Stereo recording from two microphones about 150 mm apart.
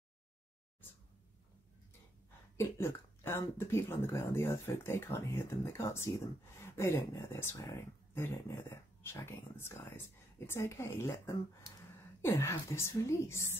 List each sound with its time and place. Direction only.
2.5 s a woman's voice: 20° left (ahead or behind)